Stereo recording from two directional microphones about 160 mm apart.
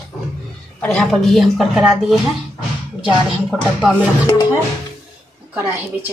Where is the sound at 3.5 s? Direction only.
Centre (ahead or behind).